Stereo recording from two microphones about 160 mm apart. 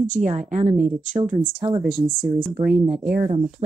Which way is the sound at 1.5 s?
30° right (ahead or behind).